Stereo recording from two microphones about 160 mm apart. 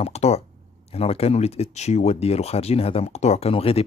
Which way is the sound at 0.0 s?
40° left (ahead or behind).